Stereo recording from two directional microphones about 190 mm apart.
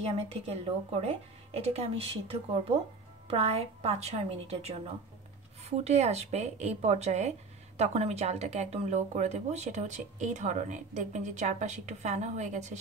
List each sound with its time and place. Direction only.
0.0 s speech: 35° right (ahead or behind)